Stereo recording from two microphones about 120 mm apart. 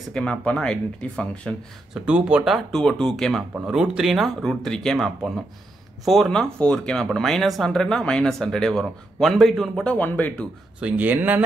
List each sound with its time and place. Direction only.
0.1 s speech: 5° left (ahead or behind)
2.0 s speech: 10° right (ahead or behind)
9.9 s speech: 15° left (ahead or behind)
10.8 s speech: 10° right (ahead or behind)